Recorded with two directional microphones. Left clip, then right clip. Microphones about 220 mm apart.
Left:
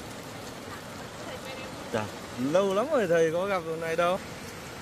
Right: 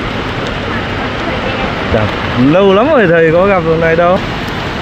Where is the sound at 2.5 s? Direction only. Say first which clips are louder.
Right 16 dB; 5° left (ahead or behind).